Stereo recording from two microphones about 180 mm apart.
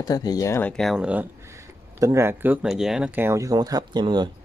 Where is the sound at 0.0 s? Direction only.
20° left (ahead or behind).